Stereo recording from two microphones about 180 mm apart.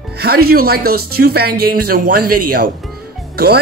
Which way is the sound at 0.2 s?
60° right (ahead or behind).